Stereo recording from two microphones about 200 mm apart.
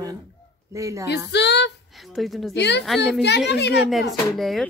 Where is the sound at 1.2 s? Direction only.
60° left (ahead or behind).